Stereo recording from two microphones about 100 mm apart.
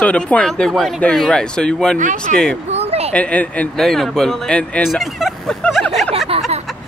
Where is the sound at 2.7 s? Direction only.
90° right.